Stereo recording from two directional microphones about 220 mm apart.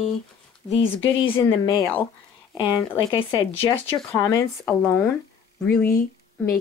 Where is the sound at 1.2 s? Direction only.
15° left (ahead or behind).